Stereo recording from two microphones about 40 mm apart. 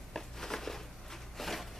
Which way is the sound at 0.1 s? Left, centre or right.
Centre.